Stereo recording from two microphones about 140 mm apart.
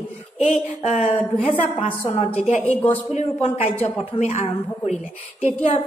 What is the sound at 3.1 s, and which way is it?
A man's voice, 60° left (ahead or behind).